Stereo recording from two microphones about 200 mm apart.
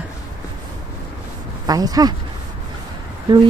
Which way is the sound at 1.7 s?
20° right (ahead or behind).